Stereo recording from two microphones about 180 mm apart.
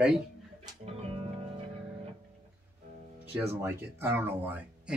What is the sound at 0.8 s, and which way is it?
Music, 35° right (ahead or behind).